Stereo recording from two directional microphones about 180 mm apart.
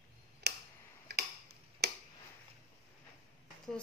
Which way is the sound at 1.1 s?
70° right (ahead or behind).